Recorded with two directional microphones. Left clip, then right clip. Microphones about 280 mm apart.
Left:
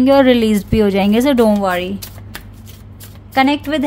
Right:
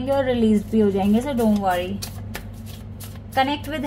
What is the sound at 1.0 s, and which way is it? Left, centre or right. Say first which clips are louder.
Speech: left 9 dB; left.